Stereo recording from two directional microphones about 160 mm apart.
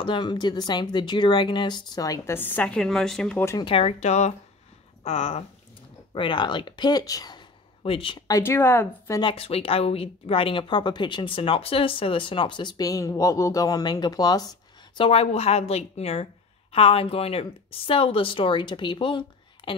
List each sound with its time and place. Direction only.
0.0 s a woman's voice: 30° left (ahead or behind); by 3.4 s 5° left (ahead or behind)
3.4 s speech: 25° left (ahead or behind)
3.7 s speech: 40° left (ahead or behind)
6.1 s speech: 30° left (ahead or behind)
8.3 s a woman's voice: 15° left (ahead or behind)
9.2 s speech: 35° left (ahead or behind)
15.0 s speech: 35° left (ahead or behind)